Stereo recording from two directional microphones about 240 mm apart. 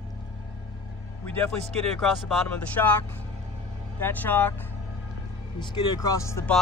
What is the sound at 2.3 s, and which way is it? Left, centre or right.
Speech, centre.